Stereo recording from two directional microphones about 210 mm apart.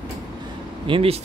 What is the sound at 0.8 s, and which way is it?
Speech, 25° right (ahead or behind).